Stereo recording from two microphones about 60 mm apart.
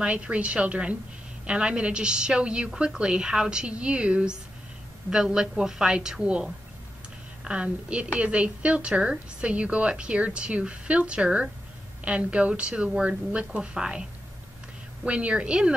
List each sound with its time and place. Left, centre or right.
0.0 s a woman's voice: centre
15.0 s a woman's voice: centre